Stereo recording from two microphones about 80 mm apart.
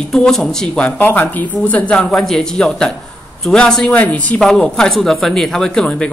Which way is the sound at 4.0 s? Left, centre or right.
Centre.